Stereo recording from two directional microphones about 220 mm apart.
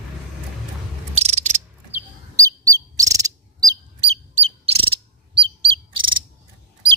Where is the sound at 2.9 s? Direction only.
15° right (ahead or behind).